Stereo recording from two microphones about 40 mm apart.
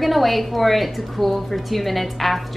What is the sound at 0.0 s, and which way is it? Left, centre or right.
A woman's voice, centre.